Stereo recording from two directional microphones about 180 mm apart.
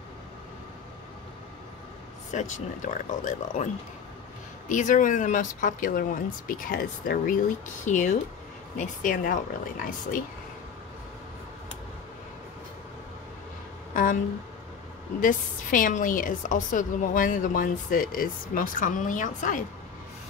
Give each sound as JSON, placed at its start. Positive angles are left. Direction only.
{"t": 2.3, "sound": "a woman's voice", "side_deg": 45}
{"t": 4.6, "sound": "a woman's voice", "side_deg": 45}
{"t": 15.1, "sound": "a woman's voice", "side_deg": 50}